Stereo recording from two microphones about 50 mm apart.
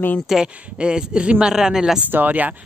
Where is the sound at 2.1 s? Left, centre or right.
Right.